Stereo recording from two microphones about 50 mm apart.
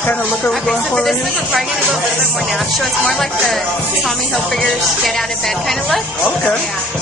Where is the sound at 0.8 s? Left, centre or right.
Centre.